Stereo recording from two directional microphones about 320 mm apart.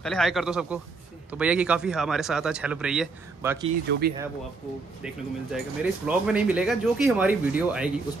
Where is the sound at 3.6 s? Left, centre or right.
Right.